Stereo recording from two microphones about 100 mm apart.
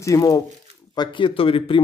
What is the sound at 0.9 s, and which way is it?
Speech, 50° left (ahead or behind).